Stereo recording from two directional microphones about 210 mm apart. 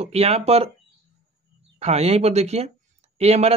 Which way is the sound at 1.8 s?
30° right (ahead or behind).